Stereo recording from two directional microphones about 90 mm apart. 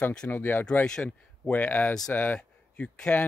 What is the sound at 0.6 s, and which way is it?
Speech, 10° left (ahead or behind).